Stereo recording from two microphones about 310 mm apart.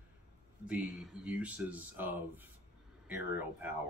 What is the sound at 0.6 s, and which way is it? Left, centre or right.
Speech, centre.